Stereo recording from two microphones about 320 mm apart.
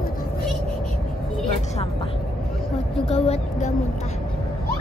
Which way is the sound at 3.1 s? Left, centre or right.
Centre.